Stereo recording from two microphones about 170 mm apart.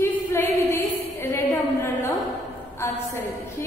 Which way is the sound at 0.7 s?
15° left (ahead or behind).